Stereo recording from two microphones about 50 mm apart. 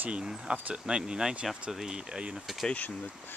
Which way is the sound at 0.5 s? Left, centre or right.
Right.